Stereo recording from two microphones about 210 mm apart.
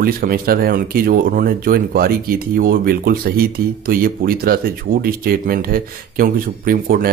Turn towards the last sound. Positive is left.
turn(degrees=-45)  # may be behind; listen again after turning